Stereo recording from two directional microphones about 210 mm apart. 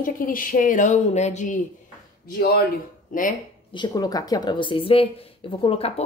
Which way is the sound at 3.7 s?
20° left (ahead or behind).